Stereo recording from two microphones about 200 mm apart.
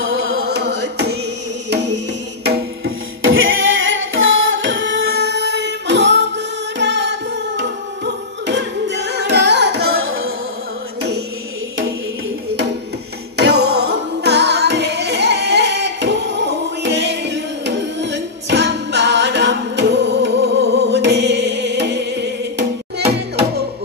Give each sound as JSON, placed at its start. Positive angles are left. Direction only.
{"t": 0.0, "sound": "music", "side_deg": -80}
{"t": 2.4, "sound": "music", "side_deg": -75}
{"t": 9.9, "sound": "music", "side_deg": -90}
{"t": 11.0, "sound": "music", "side_deg": -55}
{"t": 13.4, "sound": "music", "side_deg": -55}